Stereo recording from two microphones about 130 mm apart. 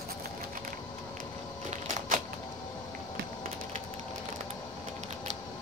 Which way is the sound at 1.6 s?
70° right (ahead or behind).